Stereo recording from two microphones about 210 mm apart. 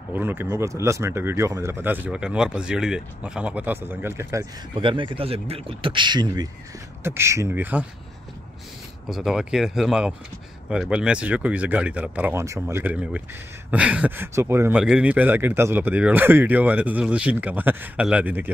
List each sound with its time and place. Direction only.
0.1 s speech: 10° right (ahead or behind)
9.0 s speech: centre (ahead or behind)